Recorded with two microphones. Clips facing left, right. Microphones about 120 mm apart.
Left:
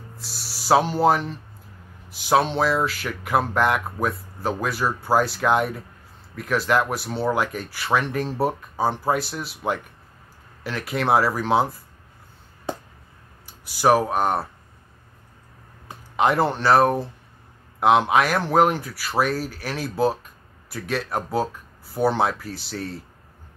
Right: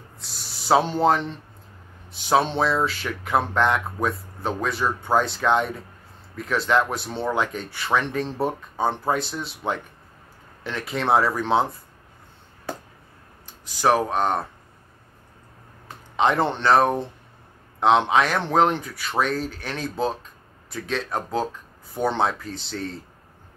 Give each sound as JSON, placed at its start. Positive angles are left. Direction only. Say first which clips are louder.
{"t": 0.2, "sound": "speech", "louder": "even", "side_deg": 5}
{"t": 12.7, "sound": "a sound", "louder": "left 3 dB", "side_deg": 20}
{"t": 13.5, "sound": "speech", "louder": "left 2 dB", "side_deg": 10}
{"t": 16.2, "sound": "speech", "louder": "left 1 dB", "side_deg": 5}